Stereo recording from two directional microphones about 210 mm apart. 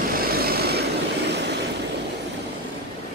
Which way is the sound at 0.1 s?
45° right (ahead or behind).